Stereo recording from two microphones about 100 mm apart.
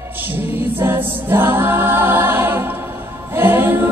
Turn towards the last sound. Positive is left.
turn(degrees=-20)  # may be behind; listen again after turning